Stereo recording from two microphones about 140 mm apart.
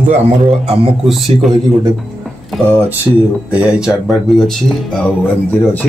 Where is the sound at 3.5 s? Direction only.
5° right (ahead or behind).